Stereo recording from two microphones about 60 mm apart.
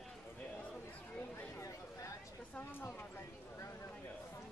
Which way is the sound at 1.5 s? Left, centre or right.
Left.